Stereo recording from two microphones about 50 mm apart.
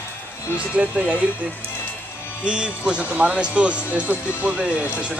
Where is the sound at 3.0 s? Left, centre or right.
Right.